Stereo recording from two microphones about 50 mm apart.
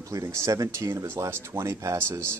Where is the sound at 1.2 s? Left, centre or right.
Right.